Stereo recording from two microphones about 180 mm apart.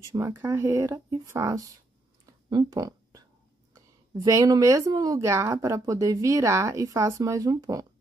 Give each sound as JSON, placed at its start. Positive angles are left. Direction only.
{"t": 0.1, "sound": "speech", "side_deg": -15}
{"t": 2.5, "sound": "a sound", "side_deg": -20}
{"t": 3.7, "sound": "speech", "side_deg": -20}